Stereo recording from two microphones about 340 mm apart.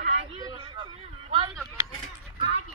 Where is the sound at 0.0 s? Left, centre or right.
Centre.